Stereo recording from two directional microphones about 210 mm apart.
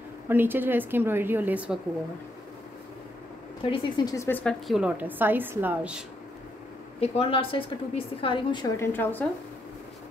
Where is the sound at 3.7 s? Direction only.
15° left (ahead or behind); by 6.0 s 5° right (ahead or behind).